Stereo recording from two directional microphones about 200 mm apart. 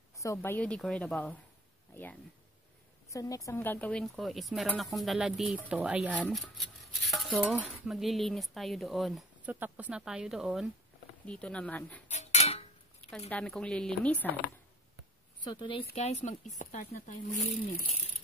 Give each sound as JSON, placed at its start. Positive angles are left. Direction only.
{"t": 0.1, "sound": "speech", "side_deg": 15}
{"t": 3.1, "sound": "speech", "side_deg": 15}
{"t": 6.1, "sound": "speech", "side_deg": 5}
{"t": 12.1, "sound": "cutlery", "side_deg": 35}
{"t": 13.3, "sound": "speech", "side_deg": 5}
{"t": 15.4, "sound": "a woman's voice", "side_deg": 25}